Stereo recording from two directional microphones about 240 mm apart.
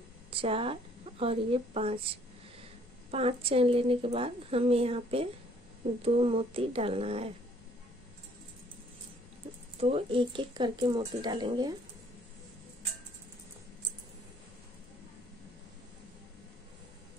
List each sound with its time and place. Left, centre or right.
0.3 s a woman's voice: right
3.1 s a woman's voice: right
9.8 s a woman's voice: right